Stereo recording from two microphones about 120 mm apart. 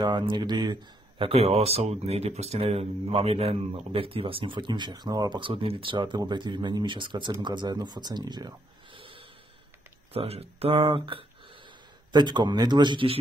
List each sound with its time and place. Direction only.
0.0 s speech: 40° right (ahead or behind)
10.1 s speech: 55° right (ahead or behind)
12.1 s a man's voice: 40° right (ahead or behind)